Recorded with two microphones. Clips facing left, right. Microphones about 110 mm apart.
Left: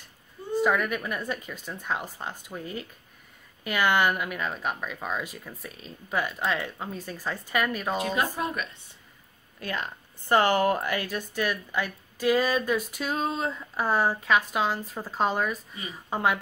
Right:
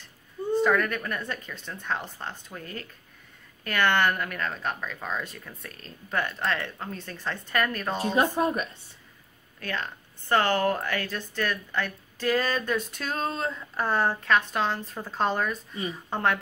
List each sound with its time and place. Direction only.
0.6 s speech: 10° left (ahead or behind)
8.0 s a woman's voice: 35° right (ahead or behind)
9.6 s speech: 10° left (ahead or behind)